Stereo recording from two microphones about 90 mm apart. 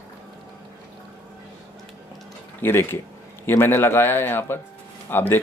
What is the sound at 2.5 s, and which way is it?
Speech, 25° left (ahead or behind).